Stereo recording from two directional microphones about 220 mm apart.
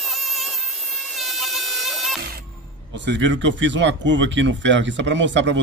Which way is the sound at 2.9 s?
55° right (ahead or behind).